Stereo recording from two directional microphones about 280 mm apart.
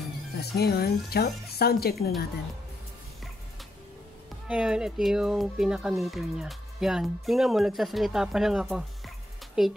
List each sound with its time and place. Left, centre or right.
0.4 s speech: left
4.5 s speech: centre